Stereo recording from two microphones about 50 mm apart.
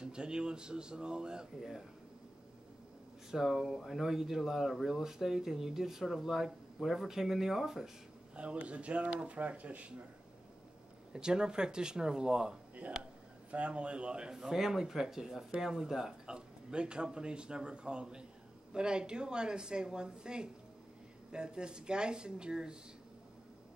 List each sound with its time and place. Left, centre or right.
0.0 s speech: centre
3.3 s speech: centre
8.4 s speech: right
11.1 s speech: centre
14.3 s speech: centre
16.3 s speech: centre